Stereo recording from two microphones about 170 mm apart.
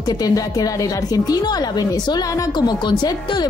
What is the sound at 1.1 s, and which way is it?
Speech, 25° left (ahead or behind).